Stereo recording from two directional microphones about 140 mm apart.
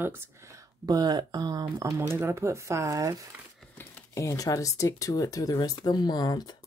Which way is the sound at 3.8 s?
25° left (ahead or behind).